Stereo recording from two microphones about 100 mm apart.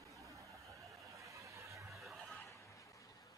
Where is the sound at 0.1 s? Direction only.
30° right (ahead or behind).